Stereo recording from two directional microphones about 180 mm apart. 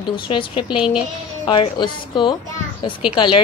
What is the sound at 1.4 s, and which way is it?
A woman's voice, 25° left (ahead or behind).